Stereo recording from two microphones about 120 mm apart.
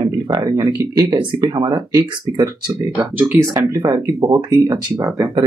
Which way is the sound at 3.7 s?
30° right (ahead or behind).